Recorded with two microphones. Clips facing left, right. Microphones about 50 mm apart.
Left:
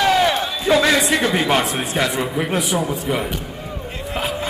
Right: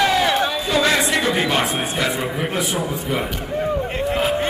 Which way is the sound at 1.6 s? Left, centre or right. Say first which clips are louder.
Right 1 dB; right.